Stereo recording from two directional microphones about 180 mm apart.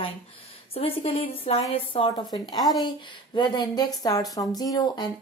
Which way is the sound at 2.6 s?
Centre (ahead or behind).